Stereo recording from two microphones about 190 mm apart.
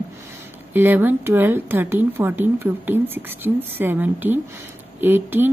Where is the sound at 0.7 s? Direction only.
10° right (ahead or behind).